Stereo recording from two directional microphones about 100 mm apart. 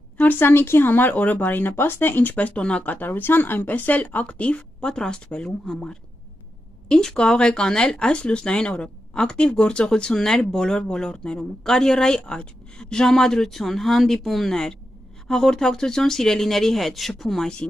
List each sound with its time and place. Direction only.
0.2 s speech: 20° left (ahead or behind)